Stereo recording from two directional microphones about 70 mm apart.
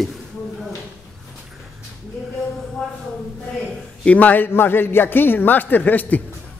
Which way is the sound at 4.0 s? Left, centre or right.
Left.